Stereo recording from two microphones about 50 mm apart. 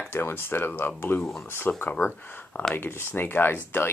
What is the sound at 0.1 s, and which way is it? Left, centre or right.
Speech, left.